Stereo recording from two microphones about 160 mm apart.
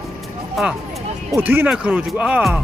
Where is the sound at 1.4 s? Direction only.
10° right (ahead or behind).